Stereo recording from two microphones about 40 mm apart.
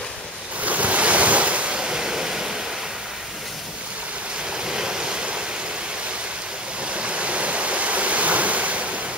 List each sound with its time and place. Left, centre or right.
0.6 s waves: right
1.8 s waves: centre
4.5 s waves: centre
6.9 s waterfall: right